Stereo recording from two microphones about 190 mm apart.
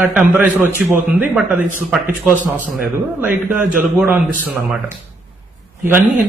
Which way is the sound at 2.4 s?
45° right (ahead or behind).